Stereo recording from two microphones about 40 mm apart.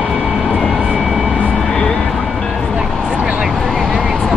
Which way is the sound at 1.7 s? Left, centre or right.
Centre.